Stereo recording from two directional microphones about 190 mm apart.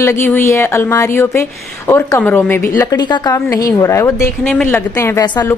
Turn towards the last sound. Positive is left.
turn(degrees=20)  # may be behind; listen again after turning